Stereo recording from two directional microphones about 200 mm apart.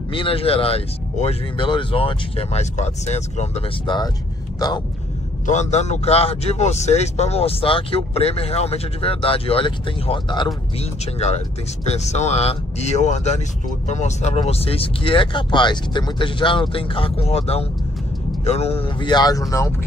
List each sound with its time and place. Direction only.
0.1 s speech: 25° left (ahead or behind)
5.5 s speech: 35° left (ahead or behind); by 19.4 s 20° left (ahead or behind)